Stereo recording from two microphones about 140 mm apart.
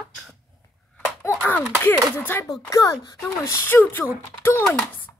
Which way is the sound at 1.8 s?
15° left (ahead or behind).